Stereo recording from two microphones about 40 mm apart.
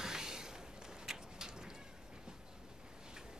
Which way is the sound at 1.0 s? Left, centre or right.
Centre.